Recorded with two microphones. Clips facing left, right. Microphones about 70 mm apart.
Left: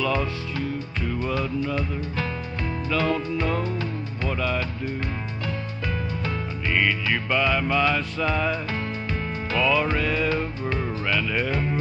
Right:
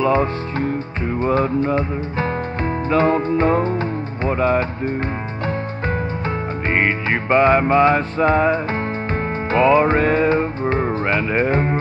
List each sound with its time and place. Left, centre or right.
0.0 s speech: right
6.7 s music: right